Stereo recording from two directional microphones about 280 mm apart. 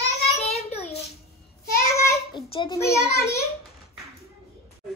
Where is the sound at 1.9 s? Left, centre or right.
Centre.